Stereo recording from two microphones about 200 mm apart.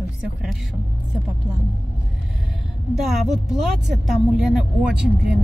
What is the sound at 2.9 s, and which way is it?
Speech, centre (ahead or behind).